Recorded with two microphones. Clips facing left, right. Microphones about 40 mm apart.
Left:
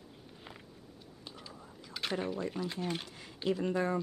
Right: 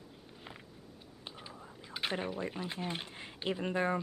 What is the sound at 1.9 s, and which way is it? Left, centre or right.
Speech, right.